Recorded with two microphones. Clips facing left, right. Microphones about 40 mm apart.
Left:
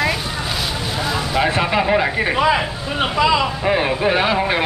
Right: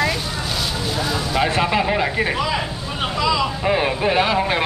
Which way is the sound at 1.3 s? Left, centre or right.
Centre.